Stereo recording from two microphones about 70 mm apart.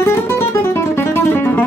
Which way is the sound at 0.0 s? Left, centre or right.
Left.